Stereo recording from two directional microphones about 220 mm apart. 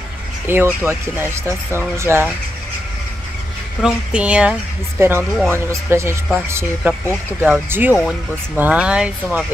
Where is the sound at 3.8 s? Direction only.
5° right (ahead or behind).